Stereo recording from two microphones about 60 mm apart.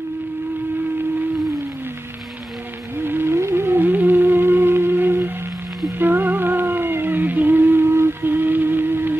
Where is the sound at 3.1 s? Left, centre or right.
Right.